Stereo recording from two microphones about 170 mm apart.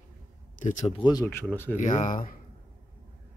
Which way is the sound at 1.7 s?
45° left (ahead or behind).